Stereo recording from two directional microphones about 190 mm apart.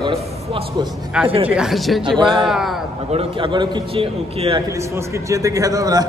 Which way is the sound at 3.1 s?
30° right (ahead or behind).